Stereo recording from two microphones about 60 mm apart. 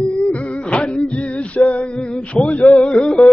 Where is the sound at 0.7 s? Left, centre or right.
Centre.